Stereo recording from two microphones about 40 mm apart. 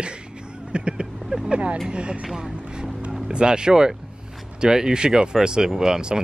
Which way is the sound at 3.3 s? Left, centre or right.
Right.